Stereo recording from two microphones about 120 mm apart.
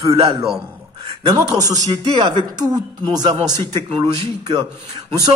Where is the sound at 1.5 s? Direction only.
30° right (ahead or behind).